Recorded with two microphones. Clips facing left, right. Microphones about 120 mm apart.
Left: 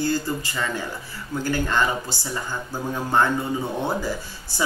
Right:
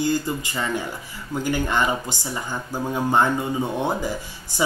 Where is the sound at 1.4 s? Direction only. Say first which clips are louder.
Right 1 dB; 15° right (ahead or behind).